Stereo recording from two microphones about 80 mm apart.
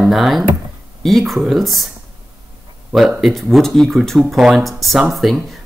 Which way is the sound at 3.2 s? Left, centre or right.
Centre.